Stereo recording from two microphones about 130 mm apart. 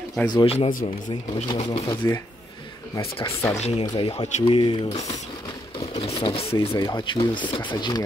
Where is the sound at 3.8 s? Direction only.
35° left (ahead or behind).